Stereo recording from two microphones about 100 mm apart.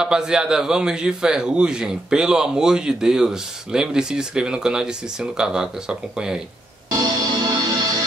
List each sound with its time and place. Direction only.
0.0 s a man's voice: 5° right (ahead or behind)
6.9 s music: 45° right (ahead or behind)